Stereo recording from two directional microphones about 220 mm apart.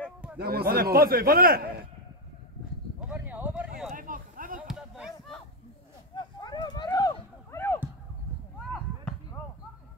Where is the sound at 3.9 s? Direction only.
40° right (ahead or behind).